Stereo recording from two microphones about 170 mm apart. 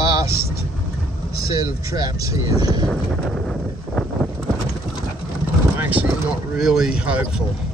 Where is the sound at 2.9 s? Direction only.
5° left (ahead or behind).